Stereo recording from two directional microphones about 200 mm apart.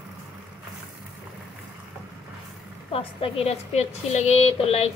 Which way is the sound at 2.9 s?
25° left (ahead or behind).